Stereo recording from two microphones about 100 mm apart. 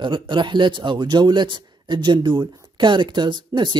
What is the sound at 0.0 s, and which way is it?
Speech, 55° right (ahead or behind).